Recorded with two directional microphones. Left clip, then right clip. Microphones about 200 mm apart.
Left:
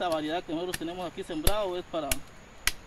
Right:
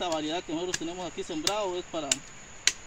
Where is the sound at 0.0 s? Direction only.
15° left (ahead or behind).